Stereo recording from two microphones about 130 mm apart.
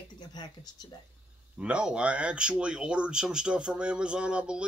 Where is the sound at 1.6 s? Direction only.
10° right (ahead or behind).